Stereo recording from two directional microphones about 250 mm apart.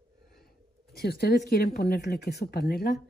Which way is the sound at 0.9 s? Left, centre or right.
Left.